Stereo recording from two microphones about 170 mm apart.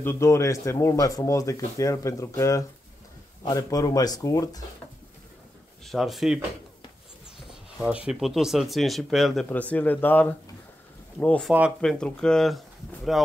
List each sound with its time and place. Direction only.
0.0 s speech: 15° left (ahead or behind)
5.9 s speech: centre (ahead or behind)
7.8 s speech: 5° right (ahead or behind)